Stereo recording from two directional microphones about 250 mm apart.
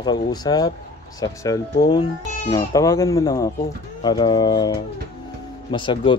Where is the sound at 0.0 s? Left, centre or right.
Centre.